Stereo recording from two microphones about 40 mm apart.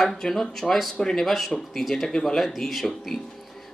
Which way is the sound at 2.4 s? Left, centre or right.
Centre.